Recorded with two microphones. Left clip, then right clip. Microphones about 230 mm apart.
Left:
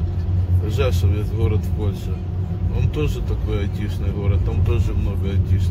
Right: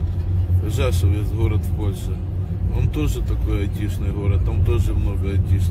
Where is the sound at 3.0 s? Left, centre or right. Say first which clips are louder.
Left 2 dB; centre.